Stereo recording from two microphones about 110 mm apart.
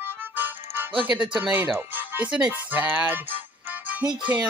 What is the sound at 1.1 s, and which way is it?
Speech, 10° right (ahead or behind).